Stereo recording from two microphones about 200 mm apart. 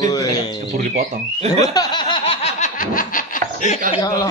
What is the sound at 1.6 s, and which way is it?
Laughter, 20° left (ahead or behind).